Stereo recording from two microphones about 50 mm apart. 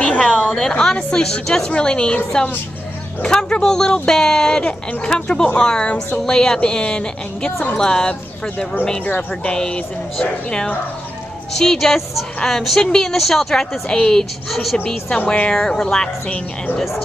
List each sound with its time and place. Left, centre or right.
0.0 s a sound: centre
0.6 s a woman's voice: centre
11.5 s a woman's voice: centre
13.8 s a woman's voice: centre
14.5 s a woman's voice: centre
15.2 s a woman's voice: centre